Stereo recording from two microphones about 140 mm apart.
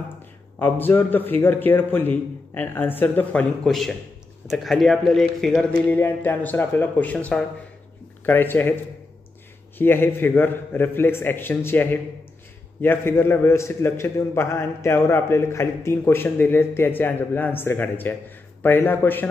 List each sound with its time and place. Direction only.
0.6 s a man's voice: 15° left (ahead or behind)
3.6 s a man's voice: centre (ahead or behind)
9.8 s a man's voice: 15° left (ahead or behind)